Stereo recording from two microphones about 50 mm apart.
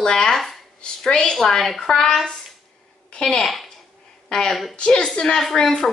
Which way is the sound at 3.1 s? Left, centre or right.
Centre.